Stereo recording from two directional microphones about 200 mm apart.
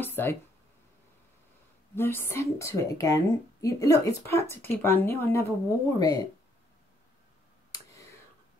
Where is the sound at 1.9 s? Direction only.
10° left (ahead or behind).